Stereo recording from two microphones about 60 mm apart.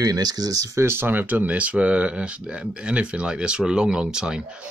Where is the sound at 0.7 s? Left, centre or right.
Right; by 4.3 s centre.